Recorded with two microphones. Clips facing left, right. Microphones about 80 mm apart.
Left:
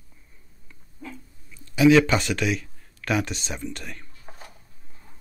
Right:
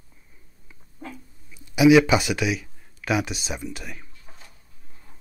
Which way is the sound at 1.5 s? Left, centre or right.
Centre.